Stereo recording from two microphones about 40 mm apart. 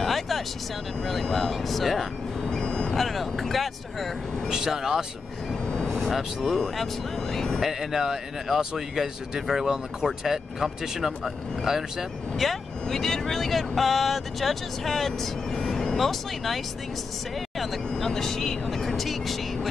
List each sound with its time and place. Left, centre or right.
0.0 s vehicle: centre
1.0 s speech: centre
2.5 s vehicle: left
2.9 s speech: centre
4.5 s speech: centre
5.7 s vehicle: centre
6.0 s speech: centre
7.3 s speech: centre
7.6 s speech: centre
12.8 s speech: centre
15.6 s vehicle: centre
16.0 s speech: centre
17.8 s vehicle: centre
18.9 s vehicle: centre